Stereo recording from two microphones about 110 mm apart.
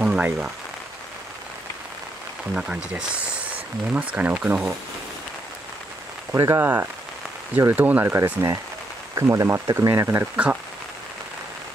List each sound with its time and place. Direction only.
0.0 s a sound: 10° right (ahead or behind)
2.5 s speech: 10° right (ahead or behind)
4.1 s speech: 10° right (ahead or behind)
6.3 s speech: 30° right (ahead or behind)